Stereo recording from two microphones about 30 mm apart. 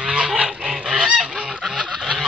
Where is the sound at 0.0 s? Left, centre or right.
Right.